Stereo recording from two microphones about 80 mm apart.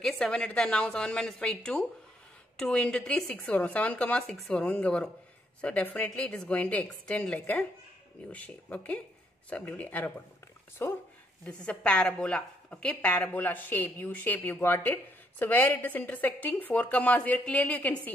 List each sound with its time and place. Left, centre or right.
0.0 s a woman's voice: centre
10.8 s speech: left
11.4 s a woman's voice: centre